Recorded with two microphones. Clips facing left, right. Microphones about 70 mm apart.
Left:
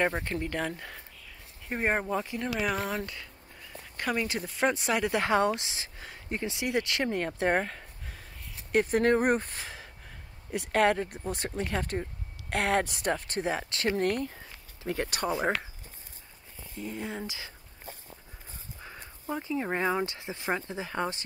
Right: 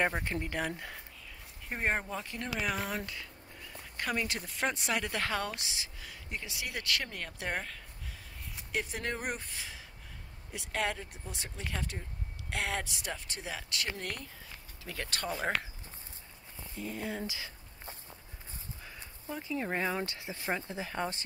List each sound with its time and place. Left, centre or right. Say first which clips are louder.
0.0 s speech: left 3 dB; centre
5.1 s speech: left 9 dB; left
5.6 s speech: left 2 dB; left
14.8 s speech: left 9 dB; left
15.0 s speech: left 4 dB; centre
16.7 s speech: left 2 dB; left
19.5 s speech: left 4 dB; centre